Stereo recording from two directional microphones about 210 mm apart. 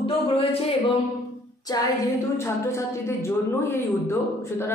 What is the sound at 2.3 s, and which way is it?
Speech, 15° left (ahead or behind).